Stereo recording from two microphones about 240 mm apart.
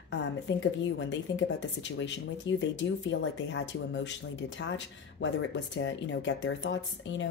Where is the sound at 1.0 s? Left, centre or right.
Left.